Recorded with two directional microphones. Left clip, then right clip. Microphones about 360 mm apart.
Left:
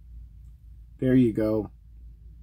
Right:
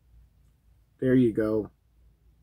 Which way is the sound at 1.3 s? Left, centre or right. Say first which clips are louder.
Left 1 dB; centre.